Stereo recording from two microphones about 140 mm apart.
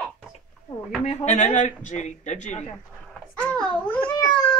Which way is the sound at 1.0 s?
55° left (ahead or behind).